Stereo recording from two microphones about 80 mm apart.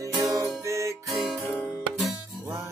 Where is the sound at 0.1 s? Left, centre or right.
Right.